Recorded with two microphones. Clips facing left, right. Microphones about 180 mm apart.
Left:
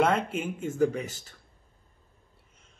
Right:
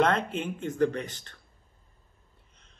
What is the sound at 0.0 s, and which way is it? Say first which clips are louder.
A man's voice: even; 10° left (ahead or behind).